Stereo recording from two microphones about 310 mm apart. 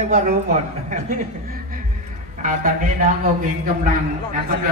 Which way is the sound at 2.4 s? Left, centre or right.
Right.